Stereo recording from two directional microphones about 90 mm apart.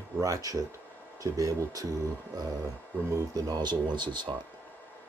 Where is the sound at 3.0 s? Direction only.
40° right (ahead or behind); by 4.3 s 60° right (ahead or behind).